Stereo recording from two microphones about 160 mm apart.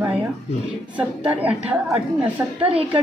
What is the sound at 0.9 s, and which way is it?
Speech, 10° right (ahead or behind).